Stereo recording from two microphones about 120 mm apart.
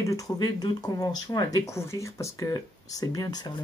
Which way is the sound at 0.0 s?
30° left (ahead or behind).